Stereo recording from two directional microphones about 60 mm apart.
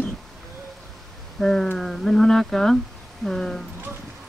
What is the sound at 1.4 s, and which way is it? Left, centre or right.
Speech, centre.